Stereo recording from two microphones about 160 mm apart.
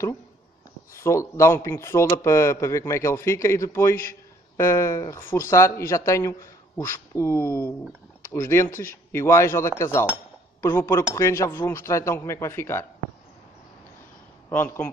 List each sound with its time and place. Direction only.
0.9 s speech: 20° left (ahead or behind)
14.5 s speech: 15° left (ahead or behind)